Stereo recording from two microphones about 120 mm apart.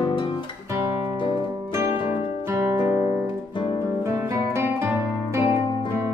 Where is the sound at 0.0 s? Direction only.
45° left (ahead or behind).